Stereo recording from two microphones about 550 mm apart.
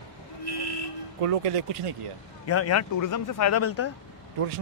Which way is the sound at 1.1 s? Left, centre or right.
Right.